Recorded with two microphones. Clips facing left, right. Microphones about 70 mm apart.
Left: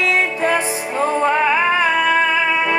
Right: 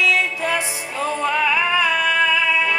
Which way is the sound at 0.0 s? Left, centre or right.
Left.